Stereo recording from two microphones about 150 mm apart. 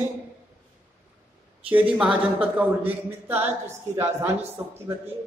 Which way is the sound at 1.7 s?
10° right (ahead or behind).